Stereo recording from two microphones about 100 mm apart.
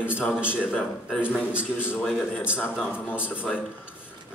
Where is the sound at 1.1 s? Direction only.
10° left (ahead or behind).